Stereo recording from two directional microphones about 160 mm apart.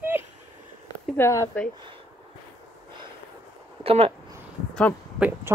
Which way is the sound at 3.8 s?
35° right (ahead or behind).